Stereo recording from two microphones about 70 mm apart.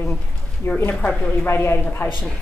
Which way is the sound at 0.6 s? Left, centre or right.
Left.